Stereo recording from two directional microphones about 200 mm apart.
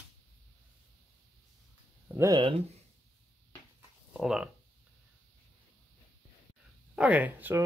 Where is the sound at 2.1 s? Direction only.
15° right (ahead or behind).